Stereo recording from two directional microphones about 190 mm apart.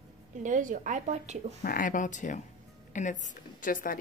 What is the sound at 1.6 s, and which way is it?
Speech, 45° left (ahead or behind).